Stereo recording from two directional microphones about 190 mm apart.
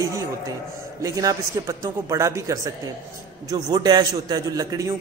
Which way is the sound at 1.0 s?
15° right (ahead or behind).